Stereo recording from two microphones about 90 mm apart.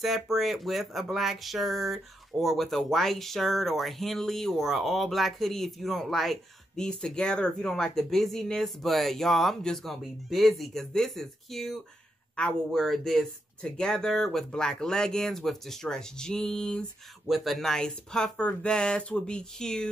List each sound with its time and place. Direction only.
0.0 s speech: centre (ahead or behind)